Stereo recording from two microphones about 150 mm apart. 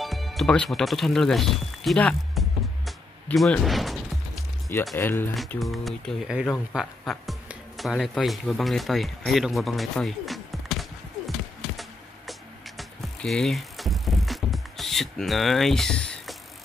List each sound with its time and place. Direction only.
0.0 s speech: centre (ahead or behind)
4.9 s speech: 15° left (ahead or behind)
5.6 s speech: centre (ahead or behind)
12.3 s music: centre (ahead or behind)